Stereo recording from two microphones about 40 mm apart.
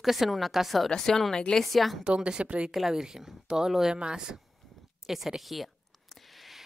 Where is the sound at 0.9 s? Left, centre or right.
Centre.